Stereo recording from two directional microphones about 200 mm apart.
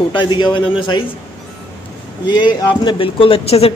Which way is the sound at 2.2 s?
20° left (ahead or behind).